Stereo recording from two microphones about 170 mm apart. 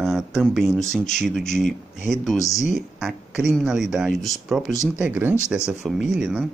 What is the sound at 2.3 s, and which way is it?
Speech, 20° left (ahead or behind).